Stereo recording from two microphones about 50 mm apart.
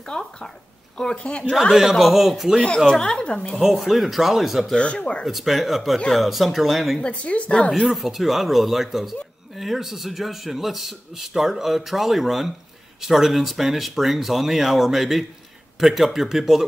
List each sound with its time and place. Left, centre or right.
0.0 s a woman's voice: centre
1.7 s speech: centre
2.9 s a woman's voice: centre
3.5 s speech: centre
4.7 s a woman's voice: centre
5.2 s speech: centre
7.0 s a woman's voice: left
7.8 s speech: centre